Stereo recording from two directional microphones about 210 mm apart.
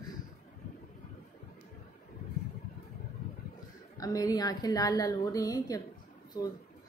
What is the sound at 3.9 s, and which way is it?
A woman's voice, 15° left (ahead or behind).